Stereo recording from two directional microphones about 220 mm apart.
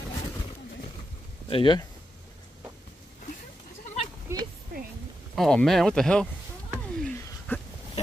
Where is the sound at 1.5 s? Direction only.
20° left (ahead or behind).